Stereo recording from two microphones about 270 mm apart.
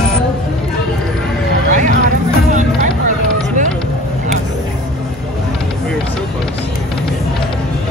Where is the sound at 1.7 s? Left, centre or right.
Right.